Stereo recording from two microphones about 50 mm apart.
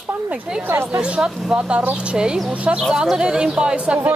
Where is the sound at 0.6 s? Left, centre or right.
Right.